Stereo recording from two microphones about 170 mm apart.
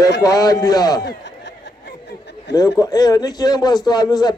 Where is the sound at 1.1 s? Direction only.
90° left.